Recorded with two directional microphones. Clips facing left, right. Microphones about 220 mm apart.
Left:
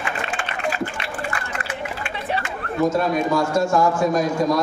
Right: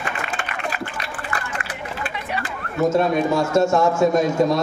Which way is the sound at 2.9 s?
25° right (ahead or behind).